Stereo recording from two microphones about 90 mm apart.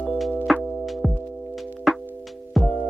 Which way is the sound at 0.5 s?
Centre (ahead or behind).